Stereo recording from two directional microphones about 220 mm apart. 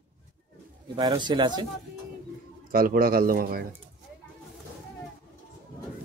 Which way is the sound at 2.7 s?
40° right (ahead or behind).